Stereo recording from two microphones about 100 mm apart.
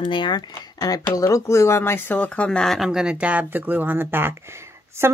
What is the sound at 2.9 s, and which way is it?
Speech, 10° right (ahead or behind).